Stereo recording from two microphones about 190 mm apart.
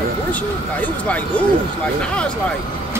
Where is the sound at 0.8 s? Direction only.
5° left (ahead or behind).